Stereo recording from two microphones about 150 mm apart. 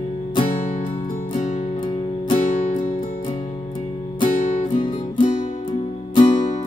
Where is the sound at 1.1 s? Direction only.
55° left (ahead or behind).